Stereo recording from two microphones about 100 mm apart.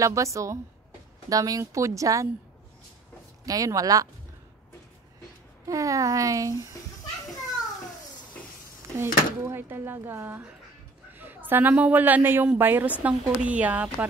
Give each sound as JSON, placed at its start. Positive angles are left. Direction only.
{"t": 0.0, "sound": "speech", "side_deg": -30}
{"t": 3.4, "sound": "speech", "side_deg": -35}
{"t": 5.7, "sound": "speech", "side_deg": -35}
{"t": 8.9, "sound": "a woman's voice", "side_deg": -25}